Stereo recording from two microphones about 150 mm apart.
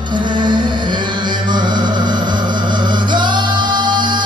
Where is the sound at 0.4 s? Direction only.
30° right (ahead or behind).